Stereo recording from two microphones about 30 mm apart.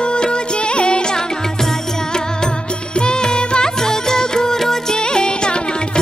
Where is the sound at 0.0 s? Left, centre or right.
Left.